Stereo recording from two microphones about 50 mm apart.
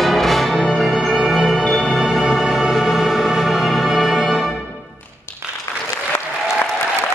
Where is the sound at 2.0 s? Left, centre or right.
Centre.